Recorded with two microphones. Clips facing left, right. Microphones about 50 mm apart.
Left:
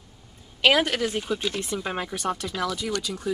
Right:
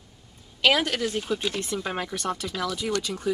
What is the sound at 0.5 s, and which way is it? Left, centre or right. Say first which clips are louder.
Speech: left 2 dB; left.